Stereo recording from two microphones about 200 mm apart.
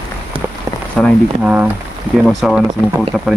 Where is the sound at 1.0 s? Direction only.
5° right (ahead or behind).